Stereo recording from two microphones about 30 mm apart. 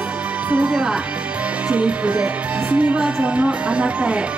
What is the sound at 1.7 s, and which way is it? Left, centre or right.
A woman's voice, right.